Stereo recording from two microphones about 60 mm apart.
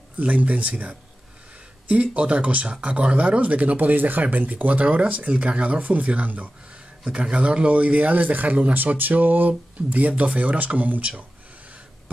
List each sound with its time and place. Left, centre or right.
0.2 s speech: right
6.7 s speech: centre